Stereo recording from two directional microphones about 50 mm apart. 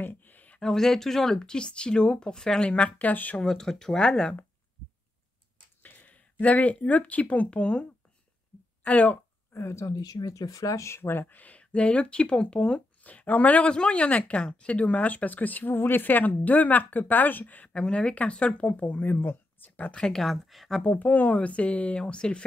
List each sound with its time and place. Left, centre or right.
0.0 s a sound: left
0.6 s speech: centre; by 3.3 s left
3.3 s speech: centre
5.8 s a sound: left
6.4 s speech: left
8.8 s speech: left
9.5 s speech: left
11.0 s speech: left; by 12.8 s centre
13.0 s speech: left
13.7 s speech: left
17.7 s speech: left
20.0 s speech: centre
20.2 s speech: centre
20.8 s speech: left; by 22.4 s centre